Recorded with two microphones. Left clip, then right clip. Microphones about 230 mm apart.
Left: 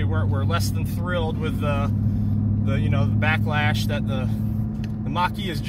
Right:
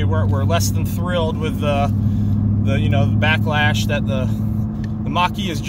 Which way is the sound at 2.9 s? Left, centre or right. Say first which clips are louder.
Right 5 dB; centre.